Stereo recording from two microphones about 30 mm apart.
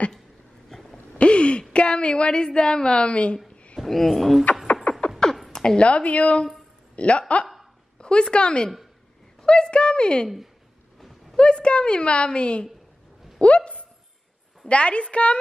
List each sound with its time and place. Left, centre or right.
0.7 s a sound: centre
1.1 s a sound: left
1.7 s a woman's voice: left
2.4 s a woman's voice: left
3.1 s a woman's voice: left
3.8 s speech: centre
4.9 s beatboxing: left
5.2 s a sound: centre
5.9 s a woman's voice: left
8.0 s a woman's voice: left
11.0 s a sound: centre
11.3 s a woman's voice: left
14.7 s a woman's voice: left